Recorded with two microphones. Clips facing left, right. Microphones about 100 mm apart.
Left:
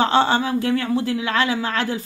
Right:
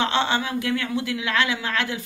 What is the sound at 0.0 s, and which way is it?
Speech, 35° left (ahead or behind).